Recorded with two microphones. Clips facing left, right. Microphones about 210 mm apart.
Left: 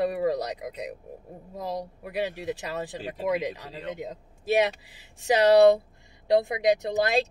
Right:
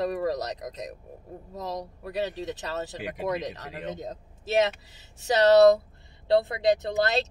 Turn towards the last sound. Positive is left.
turn(degrees=15)  # may be behind; listen again after turning